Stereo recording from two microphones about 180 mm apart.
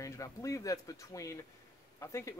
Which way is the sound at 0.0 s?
20° left (ahead or behind).